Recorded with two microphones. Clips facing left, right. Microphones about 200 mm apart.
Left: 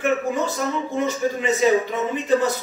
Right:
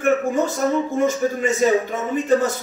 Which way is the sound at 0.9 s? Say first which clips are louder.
Right 3 dB; 45° right (ahead or behind).